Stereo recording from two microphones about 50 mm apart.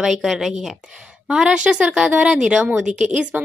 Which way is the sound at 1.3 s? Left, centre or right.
Centre.